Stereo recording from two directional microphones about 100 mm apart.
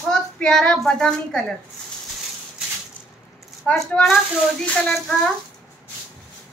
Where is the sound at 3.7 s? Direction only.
10° left (ahead or behind).